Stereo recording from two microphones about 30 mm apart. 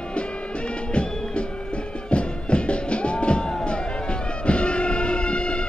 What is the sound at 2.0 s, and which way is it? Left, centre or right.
Music, left.